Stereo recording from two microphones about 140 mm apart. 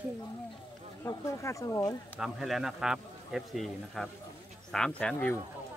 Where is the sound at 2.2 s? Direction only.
Centre (ahead or behind).